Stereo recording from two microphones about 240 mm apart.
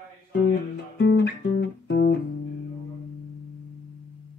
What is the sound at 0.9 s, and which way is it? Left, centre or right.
Music, left.